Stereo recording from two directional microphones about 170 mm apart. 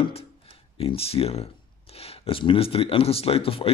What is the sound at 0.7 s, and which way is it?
Speech, 35° left (ahead or behind).